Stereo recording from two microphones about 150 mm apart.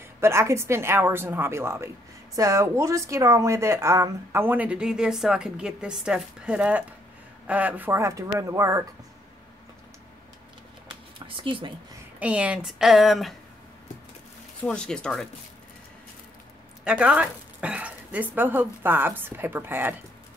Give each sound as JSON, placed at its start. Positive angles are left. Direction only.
{"t": 0.2, "sound": "speech", "side_deg": -20}
{"t": 11.1, "sound": "speech", "side_deg": -35}
{"t": 12.2, "sound": "speech", "side_deg": -10}
{"t": 14.6, "sound": "speech", "side_deg": 5}
{"t": 16.8, "sound": "speech", "side_deg": -5}